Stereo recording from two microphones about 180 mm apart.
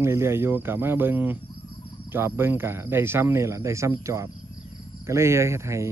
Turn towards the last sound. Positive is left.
turn(degrees=-15)  # may be behind; listen again after turning